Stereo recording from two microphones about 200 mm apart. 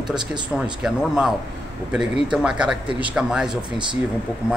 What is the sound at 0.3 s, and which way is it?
Speech, 5° right (ahead or behind).